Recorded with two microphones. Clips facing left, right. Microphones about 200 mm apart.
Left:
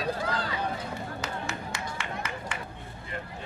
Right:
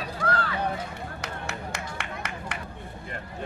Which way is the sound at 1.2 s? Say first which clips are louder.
Left 1 dB; 65° right (ahead or behind).